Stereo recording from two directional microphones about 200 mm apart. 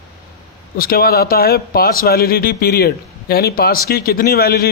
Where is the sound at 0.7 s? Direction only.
45° left (ahead or behind).